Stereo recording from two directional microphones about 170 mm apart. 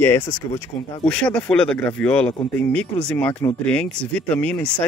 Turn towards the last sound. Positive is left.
turn(degrees=5)  # may be behind; listen again after turning